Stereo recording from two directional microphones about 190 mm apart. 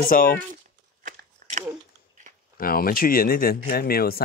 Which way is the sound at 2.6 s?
50° left (ahead or behind).